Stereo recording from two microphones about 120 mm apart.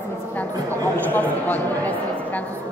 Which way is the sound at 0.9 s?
15° left (ahead or behind).